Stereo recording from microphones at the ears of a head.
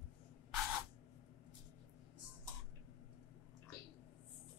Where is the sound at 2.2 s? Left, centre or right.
Left.